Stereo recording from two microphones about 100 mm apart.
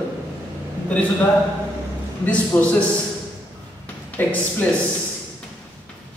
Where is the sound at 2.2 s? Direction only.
15° left (ahead or behind).